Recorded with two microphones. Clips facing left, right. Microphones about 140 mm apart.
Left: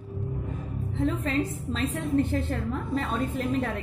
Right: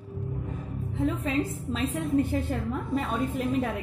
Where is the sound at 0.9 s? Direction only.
5° right (ahead or behind).